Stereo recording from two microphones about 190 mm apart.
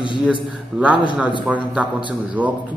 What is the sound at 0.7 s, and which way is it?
Speech, 5° right (ahead or behind).